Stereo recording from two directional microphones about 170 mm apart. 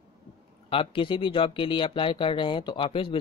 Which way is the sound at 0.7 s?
30° left (ahead or behind).